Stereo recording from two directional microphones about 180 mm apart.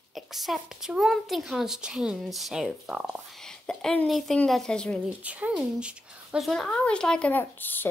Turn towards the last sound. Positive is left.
turn(degrees=10)  # may be behind; listen again after turning